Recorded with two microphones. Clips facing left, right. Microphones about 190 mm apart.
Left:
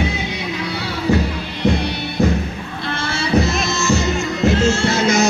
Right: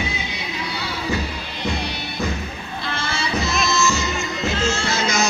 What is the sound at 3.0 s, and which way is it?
Music, 60° left (ahead or behind).